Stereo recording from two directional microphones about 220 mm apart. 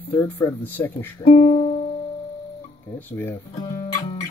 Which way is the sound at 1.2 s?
30° left (ahead or behind).